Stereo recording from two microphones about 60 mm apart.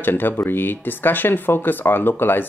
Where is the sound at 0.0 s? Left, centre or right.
Left.